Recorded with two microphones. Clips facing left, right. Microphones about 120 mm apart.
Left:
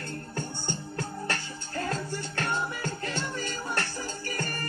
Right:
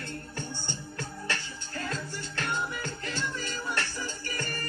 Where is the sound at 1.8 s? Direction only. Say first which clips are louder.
Left 4 dB; 40° left (ahead or behind).